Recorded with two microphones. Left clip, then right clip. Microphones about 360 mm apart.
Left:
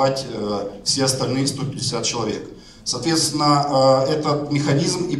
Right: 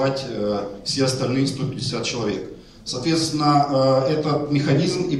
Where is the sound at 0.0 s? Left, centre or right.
Centre.